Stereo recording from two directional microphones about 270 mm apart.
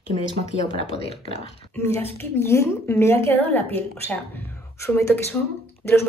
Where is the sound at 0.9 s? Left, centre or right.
Left.